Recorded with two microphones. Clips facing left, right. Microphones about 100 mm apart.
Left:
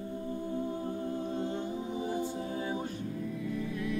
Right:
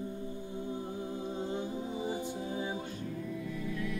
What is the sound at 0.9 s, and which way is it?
A capella, 15° right (ahead or behind).